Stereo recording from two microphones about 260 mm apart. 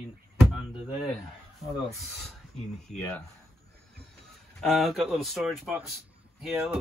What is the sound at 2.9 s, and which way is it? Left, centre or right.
Speech, centre.